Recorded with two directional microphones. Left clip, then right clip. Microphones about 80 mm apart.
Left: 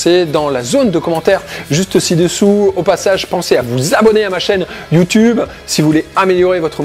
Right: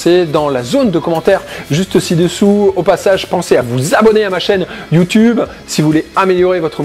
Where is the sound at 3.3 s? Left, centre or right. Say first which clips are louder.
Right 1 dB; centre.